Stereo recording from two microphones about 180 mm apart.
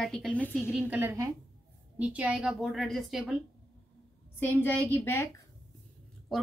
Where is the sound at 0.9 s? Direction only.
15° right (ahead or behind).